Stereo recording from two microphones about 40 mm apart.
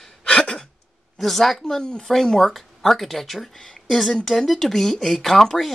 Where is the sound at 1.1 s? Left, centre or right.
Centre.